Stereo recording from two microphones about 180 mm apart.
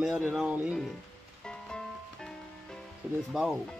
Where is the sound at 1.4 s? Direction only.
5° left (ahead or behind).